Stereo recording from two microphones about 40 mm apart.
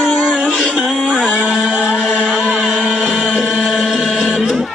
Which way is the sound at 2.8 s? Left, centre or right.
Left.